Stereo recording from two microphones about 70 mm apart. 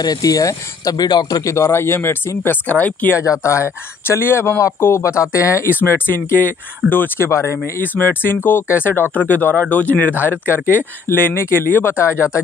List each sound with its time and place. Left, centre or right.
0.0 s speech: left
1.0 s speech: left
1.4 s speech: left
3.2 s speech: left
5.7 s speech: left
7.2 s speech: left
7.8 s speech: left